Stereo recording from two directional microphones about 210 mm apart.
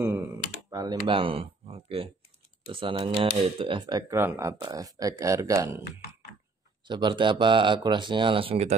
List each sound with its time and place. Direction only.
0.7 s speech: 20° right (ahead or behind)
6.9 s speech: 20° right (ahead or behind)